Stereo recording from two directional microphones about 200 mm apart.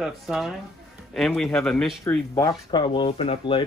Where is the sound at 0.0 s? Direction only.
5° right (ahead or behind).